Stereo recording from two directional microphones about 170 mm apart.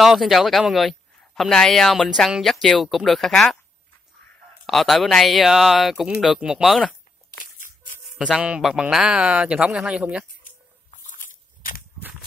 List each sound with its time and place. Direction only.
0.0 s speech: centre (ahead or behind)
4.6 s speech: centre (ahead or behind)
8.4 s speech: 5° right (ahead or behind)
11.1 s biting: 55° left (ahead or behind)